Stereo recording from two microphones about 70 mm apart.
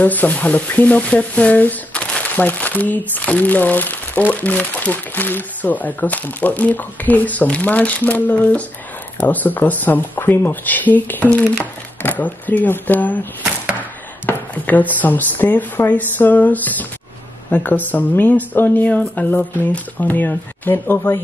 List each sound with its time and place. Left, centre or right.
0.0 s speech: left
13.4 s chopping: centre
14.2 s speech: left